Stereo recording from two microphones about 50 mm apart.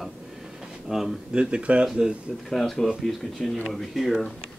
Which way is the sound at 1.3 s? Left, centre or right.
Centre.